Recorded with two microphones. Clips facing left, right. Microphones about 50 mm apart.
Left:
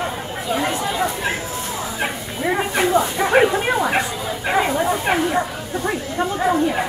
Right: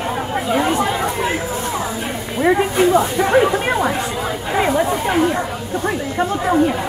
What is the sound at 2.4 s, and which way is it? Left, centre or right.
Speech, right.